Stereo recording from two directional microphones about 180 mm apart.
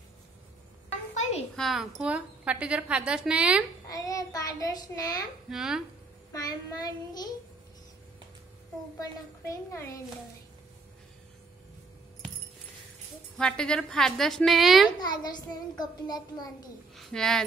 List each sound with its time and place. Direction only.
1.6 s a woman's voice: centre (ahead or behind)
3.9 s a child's voice: 20° left (ahead or behind)
5.5 s a woman's voice: centre (ahead or behind)
6.3 s a child's voice: 20° left (ahead or behind)
9.0 s a woman's voice: 15° left (ahead or behind)
13.4 s a woman's voice: 5° left (ahead or behind)
15.0 s a child's voice: 25° left (ahead or behind)
16.9 s a woman's voice: centre (ahead or behind)